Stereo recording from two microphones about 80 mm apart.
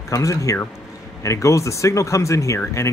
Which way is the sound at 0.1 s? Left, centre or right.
Left.